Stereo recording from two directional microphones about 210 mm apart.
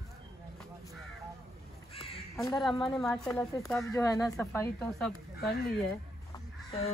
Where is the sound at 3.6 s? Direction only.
Centre (ahead or behind).